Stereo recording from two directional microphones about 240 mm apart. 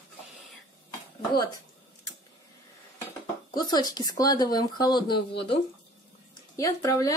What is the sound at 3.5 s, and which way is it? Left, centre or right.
Speech, centre.